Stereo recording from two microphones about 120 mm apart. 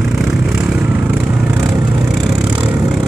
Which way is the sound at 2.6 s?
25° right (ahead or behind).